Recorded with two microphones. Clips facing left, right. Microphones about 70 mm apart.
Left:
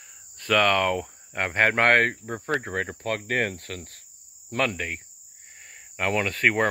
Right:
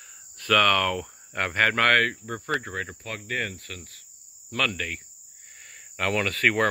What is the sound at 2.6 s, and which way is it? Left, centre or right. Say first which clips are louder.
Cricket: left 5 dB; left.